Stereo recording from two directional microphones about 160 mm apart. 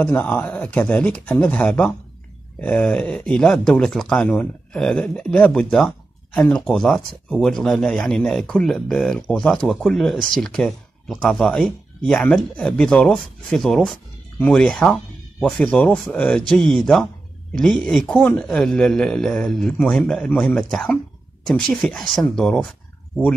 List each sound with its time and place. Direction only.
0.0 s speech: 10° left (ahead or behind)